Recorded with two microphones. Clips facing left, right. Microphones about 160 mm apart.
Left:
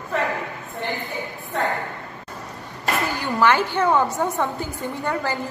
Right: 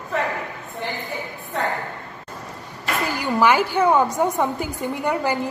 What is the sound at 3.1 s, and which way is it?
A woman's voice, 10° right (ahead or behind).